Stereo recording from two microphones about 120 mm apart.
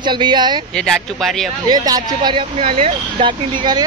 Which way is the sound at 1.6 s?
30° right (ahead or behind).